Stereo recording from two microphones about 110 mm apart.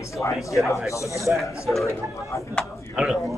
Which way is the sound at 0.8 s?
30° left (ahead or behind).